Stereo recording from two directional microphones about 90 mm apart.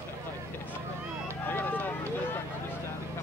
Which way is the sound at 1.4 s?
20° left (ahead or behind).